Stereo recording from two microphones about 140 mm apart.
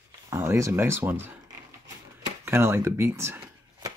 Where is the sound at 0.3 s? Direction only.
20° right (ahead or behind).